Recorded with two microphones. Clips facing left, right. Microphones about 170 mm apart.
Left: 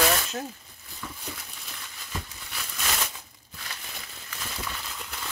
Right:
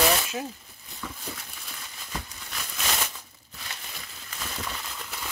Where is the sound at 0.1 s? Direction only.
5° right (ahead or behind).